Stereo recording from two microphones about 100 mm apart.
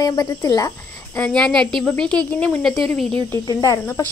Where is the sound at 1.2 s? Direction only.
10° left (ahead or behind).